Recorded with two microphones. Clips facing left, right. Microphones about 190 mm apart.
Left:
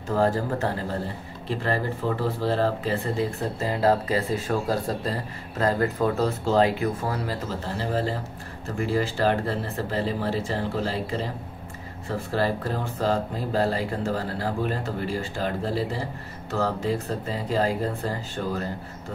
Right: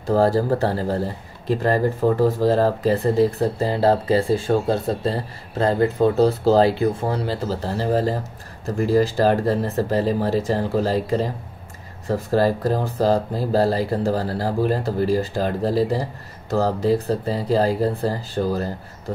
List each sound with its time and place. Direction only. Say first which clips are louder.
0.0 s speech: right 5 dB; 35° right (ahead or behind)
12.3 s speech: right 7 dB; 40° right (ahead or behind)